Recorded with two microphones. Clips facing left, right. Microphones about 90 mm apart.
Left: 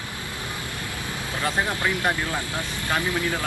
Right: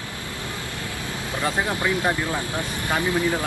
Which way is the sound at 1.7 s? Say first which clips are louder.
Right 2 dB; 20° right (ahead or behind).